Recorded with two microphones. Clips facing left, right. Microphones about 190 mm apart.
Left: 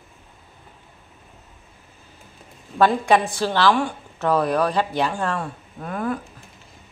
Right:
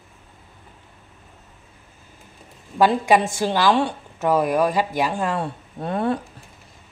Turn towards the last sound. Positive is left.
turn(degrees=-30)  # may be behind; listen again after turning